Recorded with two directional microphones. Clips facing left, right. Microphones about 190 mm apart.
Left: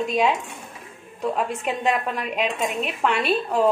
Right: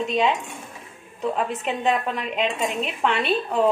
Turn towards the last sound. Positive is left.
turn(degrees=0)  # may be behind; listen again after turning